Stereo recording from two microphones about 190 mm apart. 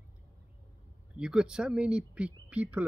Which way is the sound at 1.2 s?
5° right (ahead or behind).